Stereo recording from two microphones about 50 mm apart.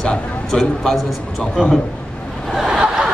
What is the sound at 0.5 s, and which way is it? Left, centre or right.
Speech, centre.